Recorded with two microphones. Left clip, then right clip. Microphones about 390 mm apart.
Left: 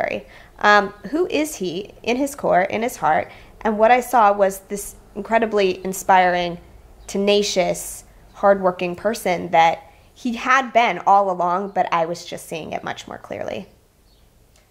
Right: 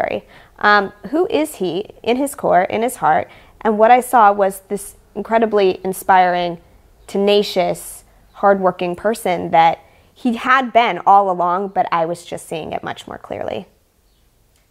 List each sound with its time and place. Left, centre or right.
0.0 s a woman's voice: right